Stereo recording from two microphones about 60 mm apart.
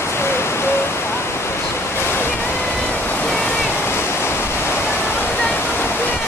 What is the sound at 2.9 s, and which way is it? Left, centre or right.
Waves, left.